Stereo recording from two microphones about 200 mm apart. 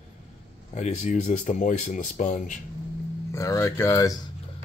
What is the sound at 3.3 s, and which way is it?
Speech, 15° left (ahead or behind).